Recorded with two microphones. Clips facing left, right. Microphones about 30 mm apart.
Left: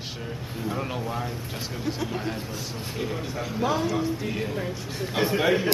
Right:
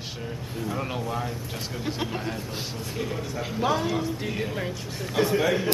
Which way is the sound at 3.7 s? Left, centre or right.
Centre.